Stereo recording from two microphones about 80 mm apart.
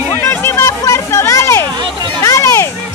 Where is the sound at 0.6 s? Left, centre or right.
Left.